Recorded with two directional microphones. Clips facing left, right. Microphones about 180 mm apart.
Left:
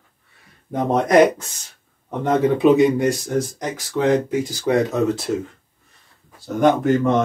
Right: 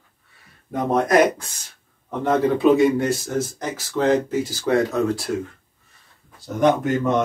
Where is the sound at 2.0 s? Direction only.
15° left (ahead or behind).